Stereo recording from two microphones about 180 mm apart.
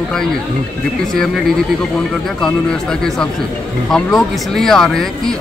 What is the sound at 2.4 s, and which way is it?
Speech, 5° left (ahead or behind).